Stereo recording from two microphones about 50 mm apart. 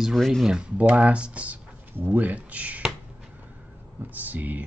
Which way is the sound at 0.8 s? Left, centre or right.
Right.